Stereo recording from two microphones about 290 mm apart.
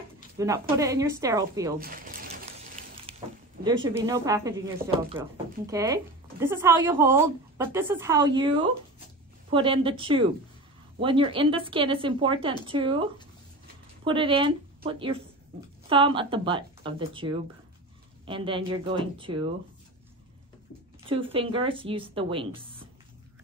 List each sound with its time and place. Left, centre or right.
0.4 s a woman's voice: centre
1.8 s a sound: right
3.6 s a woman's voice: centre
14.0 s a woman's voice: centre
21.0 s a woman's voice: centre